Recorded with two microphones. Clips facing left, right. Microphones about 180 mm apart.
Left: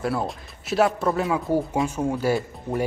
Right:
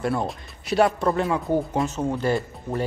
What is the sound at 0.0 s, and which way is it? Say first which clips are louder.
A man's voice: right 1 dB; 5° left (ahead or behind).